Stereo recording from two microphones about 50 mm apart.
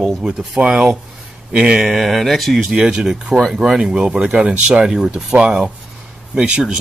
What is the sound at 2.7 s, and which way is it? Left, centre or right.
Speech, centre.